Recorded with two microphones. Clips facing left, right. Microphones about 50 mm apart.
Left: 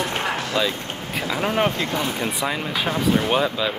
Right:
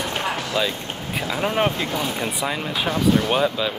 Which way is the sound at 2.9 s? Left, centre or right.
Left.